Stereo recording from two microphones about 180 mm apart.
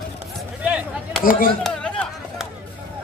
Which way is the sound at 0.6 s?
5° right (ahead or behind).